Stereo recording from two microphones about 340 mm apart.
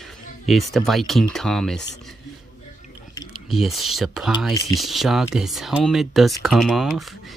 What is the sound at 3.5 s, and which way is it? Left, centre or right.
Speech, centre.